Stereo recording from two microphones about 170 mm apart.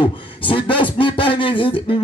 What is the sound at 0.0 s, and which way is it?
A man's voice, 30° left (ahead or behind).